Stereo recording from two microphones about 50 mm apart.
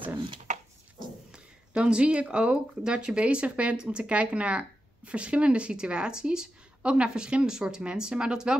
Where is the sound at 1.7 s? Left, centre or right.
Right.